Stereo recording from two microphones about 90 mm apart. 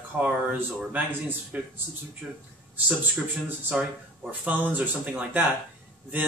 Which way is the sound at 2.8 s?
15° right (ahead or behind).